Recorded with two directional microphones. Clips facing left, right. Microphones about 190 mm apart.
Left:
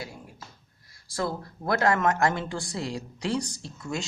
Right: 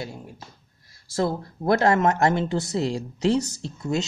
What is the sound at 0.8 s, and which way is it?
Speech, 25° right (ahead or behind).